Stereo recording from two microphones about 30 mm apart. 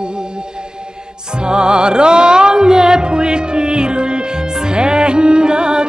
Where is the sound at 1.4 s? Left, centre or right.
Right.